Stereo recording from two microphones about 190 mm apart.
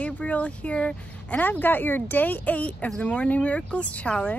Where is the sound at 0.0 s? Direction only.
5° left (ahead or behind).